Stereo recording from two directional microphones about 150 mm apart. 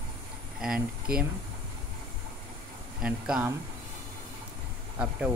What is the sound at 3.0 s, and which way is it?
Speech, 5° right (ahead or behind).